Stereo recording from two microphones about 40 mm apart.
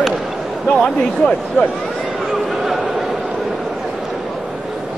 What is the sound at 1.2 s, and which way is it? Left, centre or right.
Speech, left.